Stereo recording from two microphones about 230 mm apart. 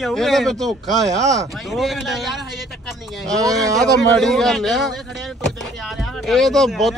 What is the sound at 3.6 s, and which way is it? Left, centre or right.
Speech, centre.